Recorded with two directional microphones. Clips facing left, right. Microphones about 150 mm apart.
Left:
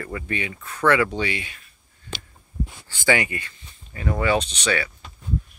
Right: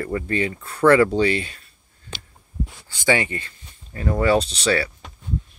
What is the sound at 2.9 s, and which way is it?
Speech, 25° right (ahead or behind).